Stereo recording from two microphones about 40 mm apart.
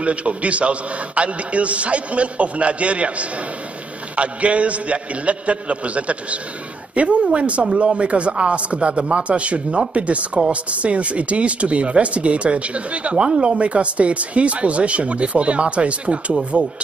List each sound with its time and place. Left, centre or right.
0.0 s speech: right